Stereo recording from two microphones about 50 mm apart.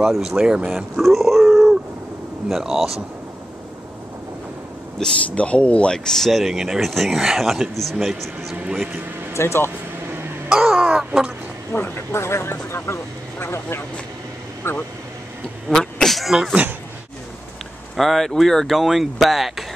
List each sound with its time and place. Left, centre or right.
0.0 s speech: centre
0.4 s speech: right
0.9 s a sound: centre
2.4 s speech: centre
5.0 s speech: centre
5.3 s speech: left
6.0 s speech: centre
6.4 s speech: centre
9.3 s speech: left
10.5 s a sound: centre
12.1 s speech: left
15.7 s a sound: centre
16.1 s a sound: centre
17.9 s speech: centre